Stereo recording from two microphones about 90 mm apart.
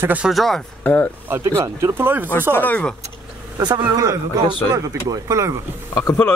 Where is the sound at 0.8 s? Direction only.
15° left (ahead or behind).